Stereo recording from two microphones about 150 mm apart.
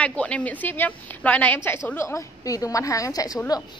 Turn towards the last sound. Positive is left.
turn(degrees=25)  # may be behind; listen again after turning